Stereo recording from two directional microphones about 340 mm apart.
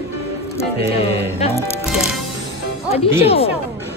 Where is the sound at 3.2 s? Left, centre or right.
Centre.